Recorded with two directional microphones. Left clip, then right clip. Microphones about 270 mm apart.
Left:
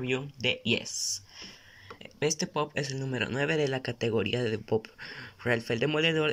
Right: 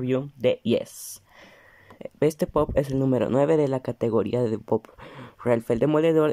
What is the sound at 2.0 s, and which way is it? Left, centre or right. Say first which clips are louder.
Speech: right 7 dB; right.